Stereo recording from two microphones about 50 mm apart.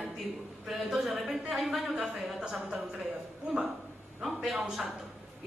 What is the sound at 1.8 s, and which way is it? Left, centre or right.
Speech, centre.